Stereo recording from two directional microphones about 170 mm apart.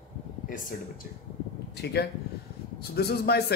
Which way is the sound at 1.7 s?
75° left (ahead or behind).